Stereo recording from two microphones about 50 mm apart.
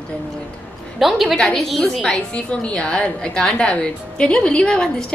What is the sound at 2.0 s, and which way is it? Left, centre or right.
A woman's voice, centre.